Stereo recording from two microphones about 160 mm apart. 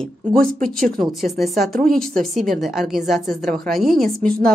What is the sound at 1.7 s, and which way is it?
Speech, 65° right (ahead or behind).